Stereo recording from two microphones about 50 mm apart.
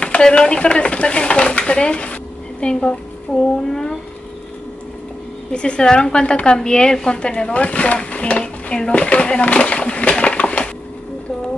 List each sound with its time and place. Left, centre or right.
0.0 s speech: left
3.3 s a sound: centre
5.5 s a woman's voice: left